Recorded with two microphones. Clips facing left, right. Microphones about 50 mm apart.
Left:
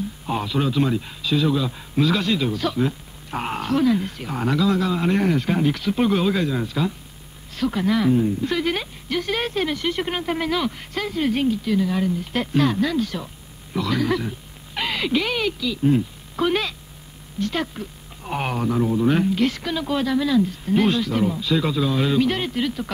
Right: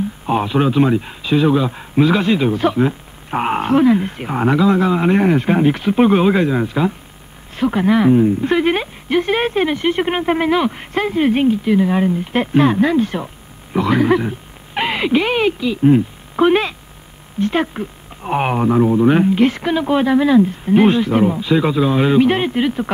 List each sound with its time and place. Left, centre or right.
0.3 s a man's voice: right